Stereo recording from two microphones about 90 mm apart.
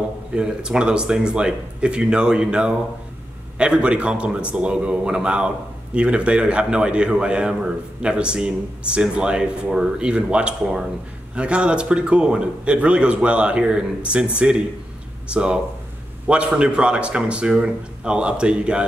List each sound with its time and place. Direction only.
0.3 s a man's voice: 10° right (ahead or behind)